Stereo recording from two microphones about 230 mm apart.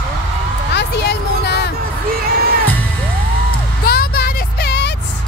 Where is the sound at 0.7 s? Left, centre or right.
Left.